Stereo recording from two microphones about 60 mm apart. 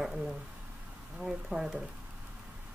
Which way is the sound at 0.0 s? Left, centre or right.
Centre.